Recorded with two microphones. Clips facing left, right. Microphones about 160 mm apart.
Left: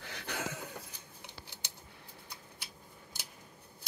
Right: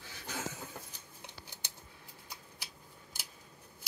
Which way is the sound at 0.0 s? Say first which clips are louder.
Left 2 dB; 65° left (ahead or behind).